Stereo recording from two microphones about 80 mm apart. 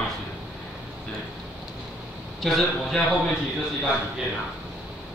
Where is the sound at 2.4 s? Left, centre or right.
Centre.